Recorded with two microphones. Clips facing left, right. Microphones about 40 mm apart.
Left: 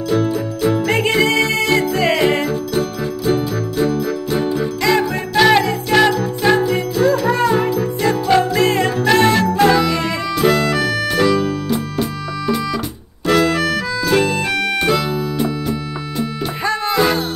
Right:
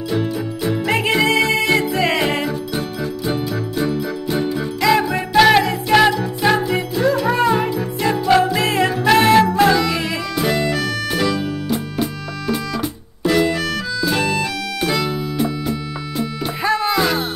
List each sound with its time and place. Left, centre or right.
0.2 s music: centre
0.7 s music: centre
13.3 s music: left
13.6 s organ: centre
15.0 s music: centre